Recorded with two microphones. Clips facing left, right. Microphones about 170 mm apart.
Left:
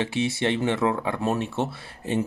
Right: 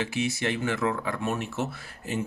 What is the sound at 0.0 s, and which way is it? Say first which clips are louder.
Speech: left 3 dB; 30° left (ahead or behind).